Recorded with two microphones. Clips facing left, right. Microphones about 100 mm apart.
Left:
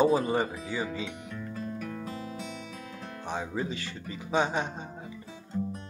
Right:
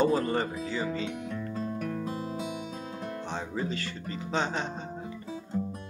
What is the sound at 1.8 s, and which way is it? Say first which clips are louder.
Music: right 4 dB; 45° right (ahead or behind).